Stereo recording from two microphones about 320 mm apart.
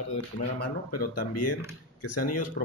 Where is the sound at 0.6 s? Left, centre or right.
Left.